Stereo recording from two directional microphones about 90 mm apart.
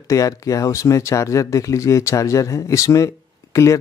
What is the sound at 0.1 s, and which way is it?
Speech, 40° left (ahead or behind).